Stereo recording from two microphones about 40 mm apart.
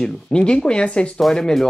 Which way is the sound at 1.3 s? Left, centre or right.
Centre.